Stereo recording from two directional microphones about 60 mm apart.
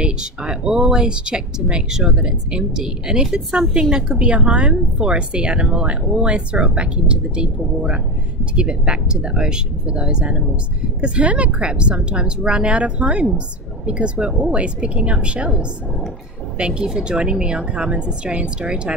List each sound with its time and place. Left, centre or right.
0.0 s a woman's voice: centre